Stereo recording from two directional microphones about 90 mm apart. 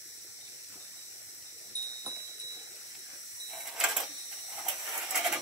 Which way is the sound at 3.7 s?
5° right (ahead or behind).